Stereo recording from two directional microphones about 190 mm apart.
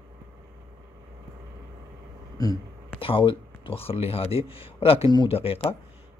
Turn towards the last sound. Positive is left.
turn(degrees=30)  # may be behind; listen again after turning